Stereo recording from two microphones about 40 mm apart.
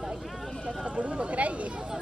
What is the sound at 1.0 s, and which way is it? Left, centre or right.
Speech, right.